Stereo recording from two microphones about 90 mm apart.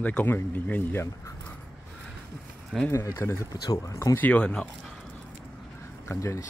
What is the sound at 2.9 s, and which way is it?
Speech, 30° left (ahead or behind).